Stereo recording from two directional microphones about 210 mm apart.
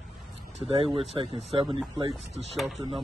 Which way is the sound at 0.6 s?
25° right (ahead or behind).